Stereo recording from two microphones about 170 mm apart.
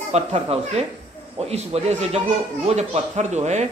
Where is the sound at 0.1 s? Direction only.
40° right (ahead or behind).